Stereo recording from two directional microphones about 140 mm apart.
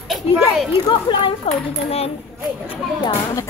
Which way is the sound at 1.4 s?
45° left (ahead or behind).